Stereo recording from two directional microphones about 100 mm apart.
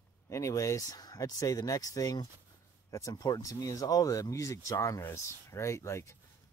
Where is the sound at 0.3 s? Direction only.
30° left (ahead or behind).